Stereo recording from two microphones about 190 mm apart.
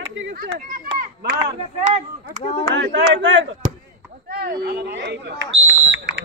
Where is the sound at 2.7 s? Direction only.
75° right (ahead or behind).